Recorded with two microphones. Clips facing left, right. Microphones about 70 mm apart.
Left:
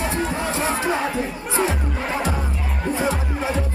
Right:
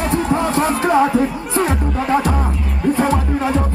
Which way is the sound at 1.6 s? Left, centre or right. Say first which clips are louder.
Right 6 dB; right.